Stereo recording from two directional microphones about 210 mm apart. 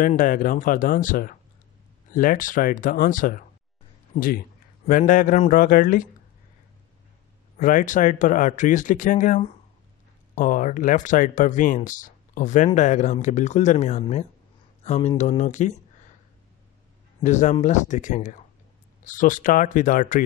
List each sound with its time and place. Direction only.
0.0 s a man's voice: 40° left (ahead or behind)
7.5 s speech: 40° left (ahead or behind)
17.2 s speech: 35° left (ahead or behind)